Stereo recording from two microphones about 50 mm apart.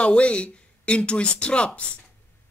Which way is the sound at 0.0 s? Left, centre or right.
Left.